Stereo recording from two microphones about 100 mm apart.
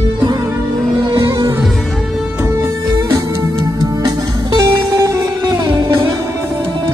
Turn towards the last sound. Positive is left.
turn(degrees=-50)  # may be behind; listen again after turning